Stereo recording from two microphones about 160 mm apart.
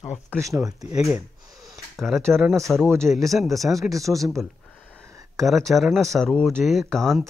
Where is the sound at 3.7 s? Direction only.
20° right (ahead or behind).